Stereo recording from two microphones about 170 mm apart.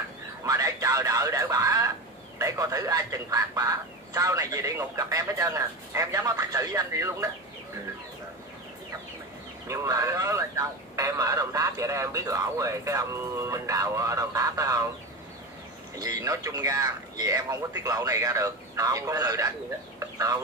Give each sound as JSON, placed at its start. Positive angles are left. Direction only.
{"t": 0.4, "sound": "speech", "side_deg": -20}
{"t": 9.7, "sound": "speech", "side_deg": -20}
{"t": 16.0, "sound": "speech", "side_deg": -20}
{"t": 20.0, "sound": "chicken", "side_deg": -20}